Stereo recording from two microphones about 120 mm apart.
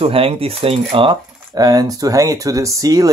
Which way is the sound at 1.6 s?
30° right (ahead or behind).